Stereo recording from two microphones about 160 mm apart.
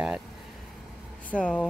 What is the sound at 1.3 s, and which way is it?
Speech, 10° left (ahead or behind).